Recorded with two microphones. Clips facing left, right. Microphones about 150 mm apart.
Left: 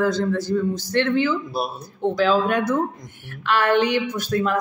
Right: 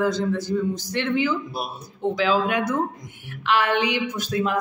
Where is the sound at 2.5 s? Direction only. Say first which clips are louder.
Left 2 dB; 15° right (ahead or behind).